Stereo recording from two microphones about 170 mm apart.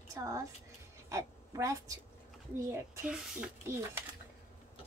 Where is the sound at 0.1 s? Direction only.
20° right (ahead or behind).